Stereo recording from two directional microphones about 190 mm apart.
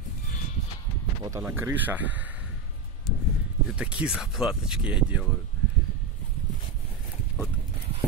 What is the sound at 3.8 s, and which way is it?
Speech, 5° right (ahead or behind).